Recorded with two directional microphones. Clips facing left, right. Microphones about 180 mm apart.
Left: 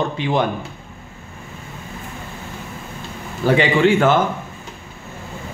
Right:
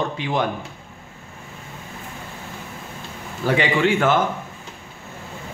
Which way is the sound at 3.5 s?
30° left (ahead or behind).